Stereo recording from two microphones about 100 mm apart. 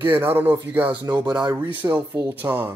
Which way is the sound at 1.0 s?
45° right (ahead or behind).